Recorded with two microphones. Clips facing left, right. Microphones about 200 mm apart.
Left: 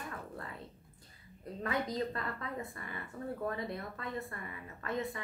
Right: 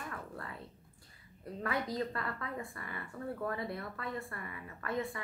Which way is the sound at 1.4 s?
20° left (ahead or behind).